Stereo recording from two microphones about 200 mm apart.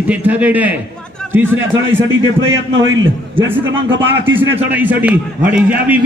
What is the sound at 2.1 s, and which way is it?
A man's voice, 70° right (ahead or behind).